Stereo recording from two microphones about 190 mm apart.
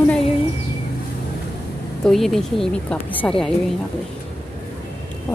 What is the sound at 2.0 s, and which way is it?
Speech, centre (ahead or behind).